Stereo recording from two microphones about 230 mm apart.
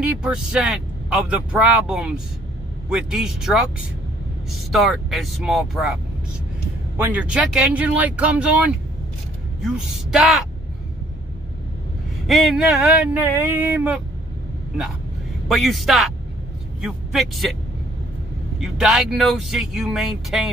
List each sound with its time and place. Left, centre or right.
0.0 s speech: centre
4.7 s speech: centre
7.0 s speech: centre
12.3 s speech: centre
15.4 s speech: centre
18.6 s speech: centre